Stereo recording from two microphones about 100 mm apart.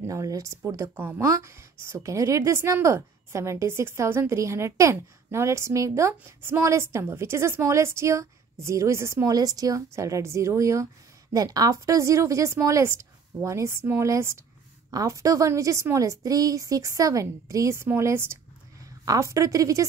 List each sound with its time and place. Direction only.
0.0 s a woman's voice: 30° right (ahead or behind)
1.2 s a woman's voice: 30° right (ahead or behind)